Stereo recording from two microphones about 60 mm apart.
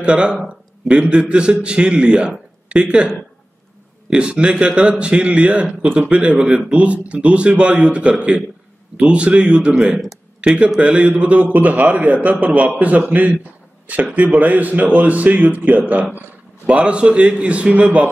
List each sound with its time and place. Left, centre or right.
0.0 s a man's voice: centre
4.1 s a man's voice: centre